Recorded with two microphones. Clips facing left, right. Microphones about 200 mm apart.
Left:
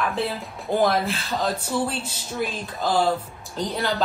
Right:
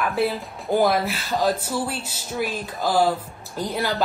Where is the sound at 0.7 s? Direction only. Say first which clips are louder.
Right 1 dB; 5° right (ahead or behind).